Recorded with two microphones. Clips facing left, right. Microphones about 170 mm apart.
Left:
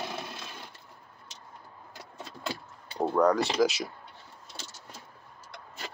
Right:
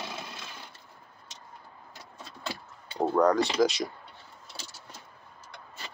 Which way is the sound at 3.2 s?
5° left (ahead or behind).